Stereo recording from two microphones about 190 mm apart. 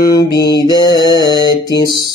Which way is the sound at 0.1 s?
20° left (ahead or behind).